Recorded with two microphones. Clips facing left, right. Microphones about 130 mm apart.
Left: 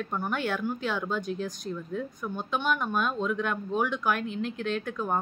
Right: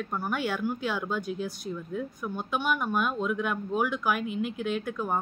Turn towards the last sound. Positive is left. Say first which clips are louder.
# even
turn(degrees=-5)  # may be behind; listen again after turning